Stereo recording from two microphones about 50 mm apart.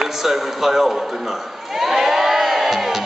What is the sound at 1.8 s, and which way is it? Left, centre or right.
Crowd, centre.